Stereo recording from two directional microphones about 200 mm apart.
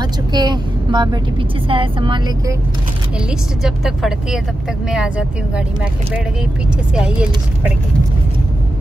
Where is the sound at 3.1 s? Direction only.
5° right (ahead or behind).